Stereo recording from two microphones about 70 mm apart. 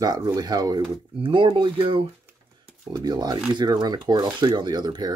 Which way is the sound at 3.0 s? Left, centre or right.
Right.